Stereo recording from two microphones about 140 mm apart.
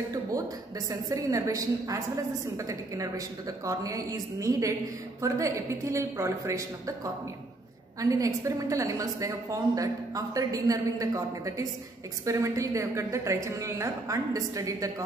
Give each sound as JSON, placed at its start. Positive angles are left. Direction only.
{"t": 0.1, "sound": "a woman's voice", "side_deg": -25}
{"t": 8.0, "sound": "a woman's voice", "side_deg": -25}